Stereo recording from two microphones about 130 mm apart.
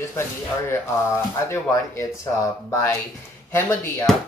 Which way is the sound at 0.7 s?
20° left (ahead or behind).